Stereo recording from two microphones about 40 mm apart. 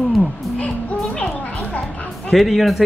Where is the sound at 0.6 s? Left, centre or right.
Left.